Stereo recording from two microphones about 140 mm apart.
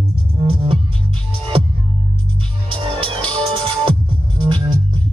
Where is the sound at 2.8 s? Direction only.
40° right (ahead or behind).